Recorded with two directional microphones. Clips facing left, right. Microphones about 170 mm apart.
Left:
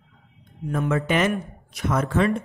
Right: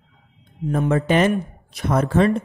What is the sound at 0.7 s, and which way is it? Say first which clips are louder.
A man's voice: right 4 dB; 35° right (ahead or behind).